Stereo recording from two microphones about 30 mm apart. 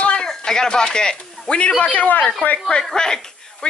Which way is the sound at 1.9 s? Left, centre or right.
Left.